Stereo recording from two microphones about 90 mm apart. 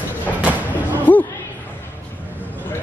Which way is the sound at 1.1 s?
20° left (ahead or behind).